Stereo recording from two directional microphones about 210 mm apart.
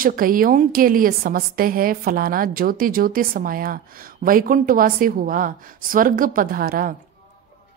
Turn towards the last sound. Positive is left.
turn(degrees=-45)  # may be behind; listen again after turning